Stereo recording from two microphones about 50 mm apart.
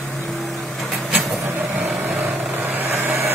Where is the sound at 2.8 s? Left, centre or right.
Right.